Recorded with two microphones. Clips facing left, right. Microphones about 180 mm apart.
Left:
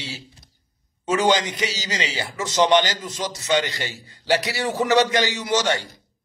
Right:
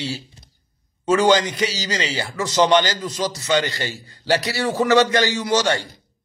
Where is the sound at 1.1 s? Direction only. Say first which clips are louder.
Right 4 dB; 20° left (ahead or behind).